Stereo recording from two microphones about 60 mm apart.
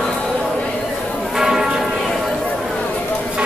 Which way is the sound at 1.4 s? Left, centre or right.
Centre.